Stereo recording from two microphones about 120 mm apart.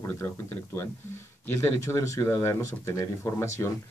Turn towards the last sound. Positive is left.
turn(degrees=25)  # may be behind; listen again after turning